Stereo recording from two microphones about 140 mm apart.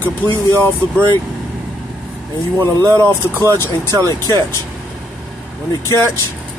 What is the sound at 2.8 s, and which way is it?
Speech, 25° right (ahead or behind).